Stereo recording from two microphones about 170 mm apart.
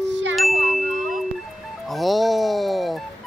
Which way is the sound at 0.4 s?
Centre (ahead or behind).